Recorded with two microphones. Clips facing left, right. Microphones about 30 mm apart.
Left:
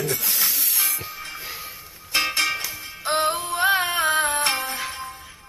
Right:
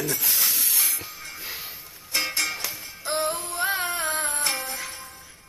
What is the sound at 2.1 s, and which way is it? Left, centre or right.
Music, left.